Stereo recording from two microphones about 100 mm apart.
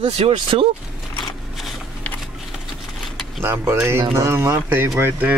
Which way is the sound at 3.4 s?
25° right (ahead or behind).